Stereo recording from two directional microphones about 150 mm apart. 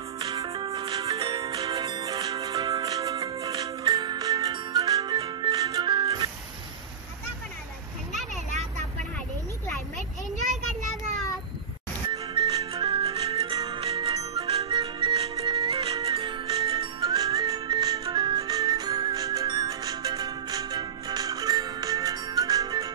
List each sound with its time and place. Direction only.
0.2 s music: 25° right (ahead or behind)
12.1 s music: 30° right (ahead or behind)